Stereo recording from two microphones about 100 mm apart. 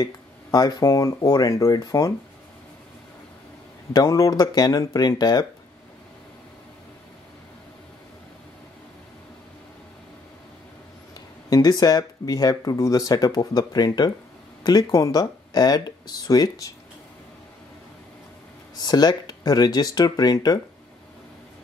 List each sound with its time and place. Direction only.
0.0 s speech: 40° left (ahead or behind)
3.9 s speech: 35° left (ahead or behind)
11.5 s speech: 40° left (ahead or behind)
18.8 s speech: 45° left (ahead or behind)